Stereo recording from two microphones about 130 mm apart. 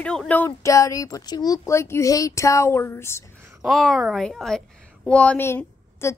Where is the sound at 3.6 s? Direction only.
Centre (ahead or behind).